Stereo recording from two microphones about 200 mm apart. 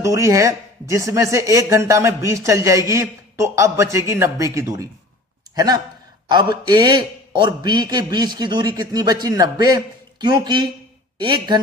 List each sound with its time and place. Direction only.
0.0 s a man's voice: 15° right (ahead or behind)